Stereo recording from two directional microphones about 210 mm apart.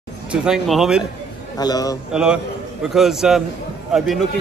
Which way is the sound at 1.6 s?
15° left (ahead or behind).